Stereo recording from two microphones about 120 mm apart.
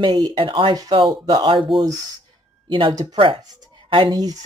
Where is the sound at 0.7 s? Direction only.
35° right (ahead or behind).